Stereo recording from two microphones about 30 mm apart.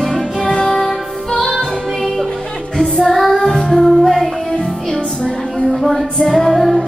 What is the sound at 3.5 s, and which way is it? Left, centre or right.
Music, centre.